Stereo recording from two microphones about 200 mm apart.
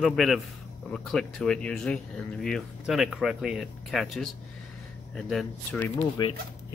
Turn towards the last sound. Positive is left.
turn(degrees=20)  # may be behind; listen again after turning